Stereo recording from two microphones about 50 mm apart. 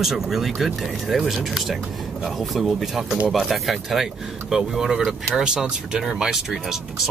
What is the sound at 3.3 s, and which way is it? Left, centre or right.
Speech, centre.